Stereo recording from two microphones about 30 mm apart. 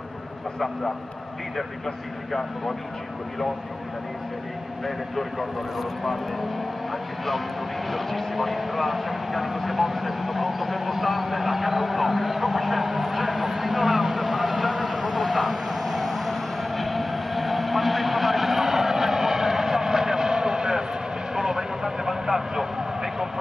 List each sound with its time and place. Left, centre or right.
4.8 s speech: centre
7.9 s vehicle: centre